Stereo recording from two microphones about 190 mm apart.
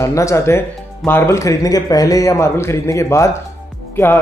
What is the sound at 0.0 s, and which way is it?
Speech, 15° left (ahead or behind).